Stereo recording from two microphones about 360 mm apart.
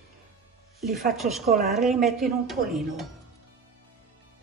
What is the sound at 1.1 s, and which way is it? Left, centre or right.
A woman's voice, centre.